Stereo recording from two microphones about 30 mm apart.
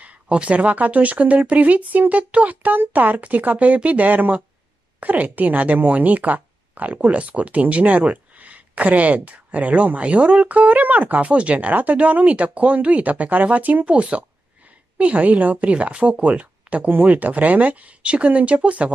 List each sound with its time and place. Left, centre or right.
0.0 s speech: right
10.5 s speech: right
13.8 s a woman's voice: right
15.2 s speech: right
15.7 s speech: right